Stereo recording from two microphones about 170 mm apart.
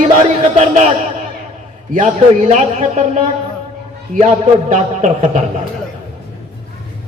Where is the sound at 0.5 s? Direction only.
45° right (ahead or behind).